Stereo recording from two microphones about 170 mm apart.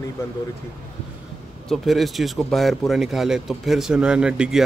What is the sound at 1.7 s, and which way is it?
Speech, centre (ahead or behind).